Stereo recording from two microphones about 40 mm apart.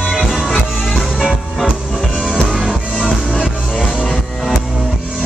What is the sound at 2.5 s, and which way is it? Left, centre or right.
Music, centre.